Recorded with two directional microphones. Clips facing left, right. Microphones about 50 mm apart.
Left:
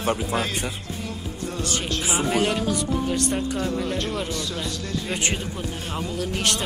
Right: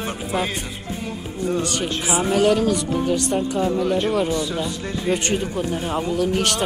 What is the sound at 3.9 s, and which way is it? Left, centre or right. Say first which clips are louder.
Speech: right 7 dB; centre.